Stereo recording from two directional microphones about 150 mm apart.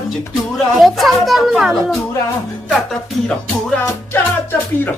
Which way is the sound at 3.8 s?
15° left (ahead or behind).